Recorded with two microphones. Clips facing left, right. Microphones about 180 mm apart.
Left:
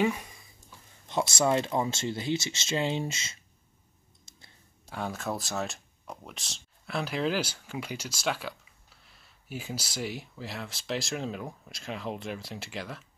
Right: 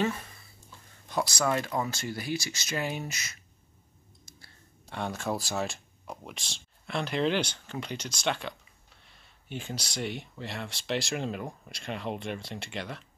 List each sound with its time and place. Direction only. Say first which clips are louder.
0.0 s a sound: left 2 dB; 15° left (ahead or behind)
1.0 s speech: left 2 dB; 25° left (ahead or behind)
4.3 s clicking: right 3 dB; 25° left (ahead or behind)
4.8 s speech: right 1 dB; 5° left (ahead or behind)